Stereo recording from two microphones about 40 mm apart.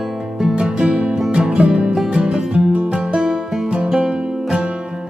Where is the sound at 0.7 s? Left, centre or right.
Centre.